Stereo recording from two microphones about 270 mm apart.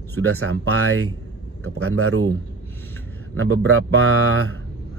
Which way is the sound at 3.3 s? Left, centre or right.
Right.